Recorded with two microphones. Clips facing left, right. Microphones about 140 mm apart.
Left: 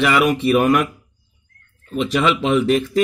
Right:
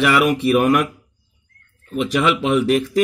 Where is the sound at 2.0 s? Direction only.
10° right (ahead or behind).